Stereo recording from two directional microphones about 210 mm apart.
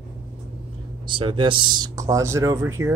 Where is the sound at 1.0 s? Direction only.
25° right (ahead or behind).